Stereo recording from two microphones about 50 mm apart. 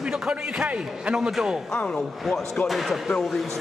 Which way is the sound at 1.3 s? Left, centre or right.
Centre.